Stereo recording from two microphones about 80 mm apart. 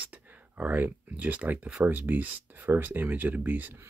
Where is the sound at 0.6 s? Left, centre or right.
Right.